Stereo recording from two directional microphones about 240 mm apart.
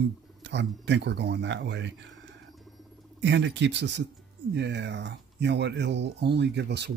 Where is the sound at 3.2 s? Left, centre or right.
Right.